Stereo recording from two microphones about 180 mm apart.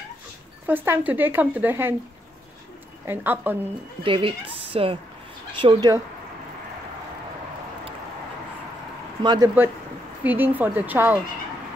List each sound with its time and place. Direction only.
0.7 s speech: 10° right (ahead or behind)
3.1 s speech: 10° right (ahead or behind)
4.0 s a woman's voice: 30° right (ahead or behind)
9.2 s speech: 25° right (ahead or behind)
10.2 s speech: 10° right (ahead or behind)